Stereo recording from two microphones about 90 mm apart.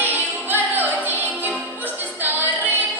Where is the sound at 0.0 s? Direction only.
20° right (ahead or behind).